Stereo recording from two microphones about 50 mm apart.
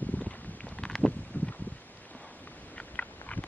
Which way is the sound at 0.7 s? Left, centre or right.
Centre.